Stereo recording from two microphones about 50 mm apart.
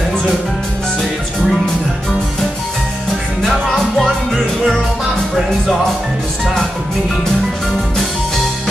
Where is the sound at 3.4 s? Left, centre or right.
Centre.